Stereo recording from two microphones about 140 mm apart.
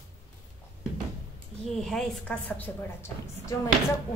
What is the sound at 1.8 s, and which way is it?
A woman's voice, 5° left (ahead or behind).